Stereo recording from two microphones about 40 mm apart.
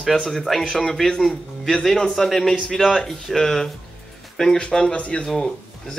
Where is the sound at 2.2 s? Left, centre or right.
Centre.